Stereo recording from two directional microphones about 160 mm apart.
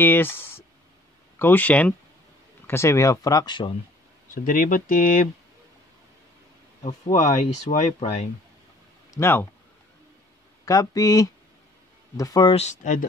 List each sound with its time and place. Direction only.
0.0 s speech: 15° left (ahead or behind); by 3.7 s 30° left (ahead or behind)
4.3 s speech: 55° left (ahead or behind)
6.8 s speech: 45° left (ahead or behind)
9.1 s speech: 15° left (ahead or behind)
10.6 s speech: 20° left (ahead or behind)
12.5 s speech: 50° left (ahead or behind)